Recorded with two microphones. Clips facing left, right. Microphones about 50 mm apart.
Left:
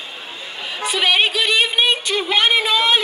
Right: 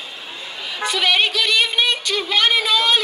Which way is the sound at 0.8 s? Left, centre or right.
Left.